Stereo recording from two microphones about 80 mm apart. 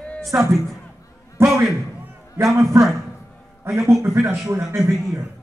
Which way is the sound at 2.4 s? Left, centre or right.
Right.